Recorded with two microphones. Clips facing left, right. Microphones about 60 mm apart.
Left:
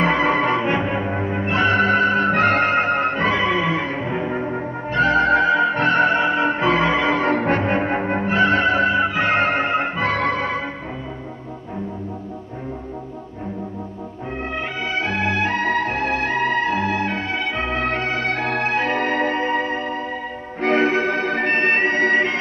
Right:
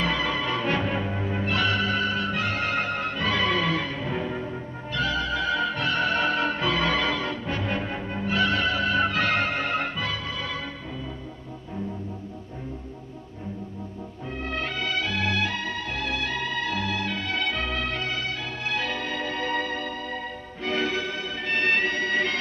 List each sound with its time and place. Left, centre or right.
0.0 s music: left
3.3 s music: left
7.2 s music: left
10.0 s music: left
14.9 s music: left
20.6 s music: left
21.5 s music: left